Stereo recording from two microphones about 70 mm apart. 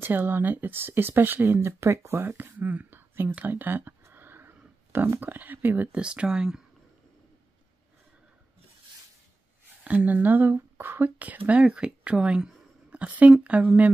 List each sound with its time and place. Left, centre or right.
0.0 s speech: right
3.3 s a sound: right
5.9 s speech: centre
9.8 s speech: right